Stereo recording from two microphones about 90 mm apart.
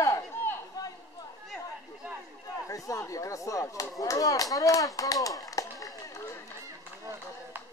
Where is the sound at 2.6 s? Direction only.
40° left (ahead or behind).